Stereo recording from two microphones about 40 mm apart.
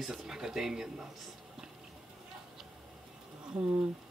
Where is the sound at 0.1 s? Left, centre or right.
Centre.